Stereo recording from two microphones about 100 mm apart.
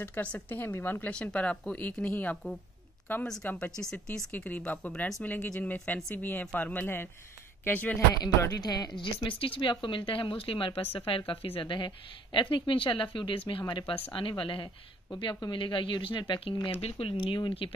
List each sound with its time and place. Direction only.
0.0 s speech: 20° left (ahead or behind)
1.1 s speech: 10° left (ahead or behind)
8.5 s a woman's voice: 45° left (ahead or behind)
9.4 s a woman's voice: 60° left (ahead or behind)